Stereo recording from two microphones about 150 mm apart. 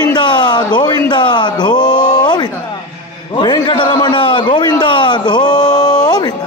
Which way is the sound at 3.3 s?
30° left (ahead or behind).